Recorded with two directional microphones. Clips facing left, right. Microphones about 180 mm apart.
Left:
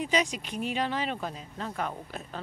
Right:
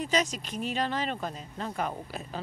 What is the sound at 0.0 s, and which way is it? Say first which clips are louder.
Speech: even; 10° left (ahead or behind).